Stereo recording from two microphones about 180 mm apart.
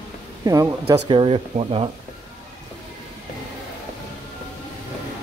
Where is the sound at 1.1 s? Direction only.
30° right (ahead or behind).